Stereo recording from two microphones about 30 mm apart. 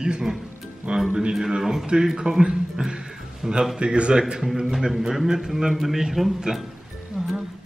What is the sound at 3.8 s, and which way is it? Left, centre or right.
Speech, right.